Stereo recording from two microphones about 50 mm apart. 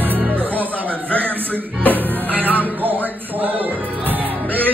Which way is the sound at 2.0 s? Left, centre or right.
Right.